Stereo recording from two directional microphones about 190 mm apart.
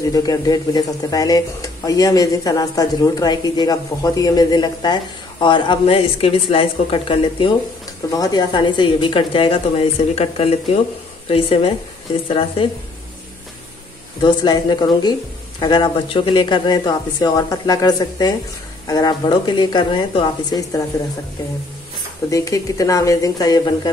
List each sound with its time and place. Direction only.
0.0 s speech: 20° left (ahead or behind)
14.2 s speech: 20° left (ahead or behind)
22.3 s speech: 15° left (ahead or behind)